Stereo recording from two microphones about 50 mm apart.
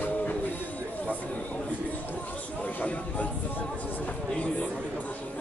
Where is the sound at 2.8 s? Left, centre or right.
Left.